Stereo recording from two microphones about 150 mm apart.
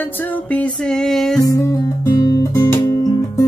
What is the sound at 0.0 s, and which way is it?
Music, 10° left (ahead or behind).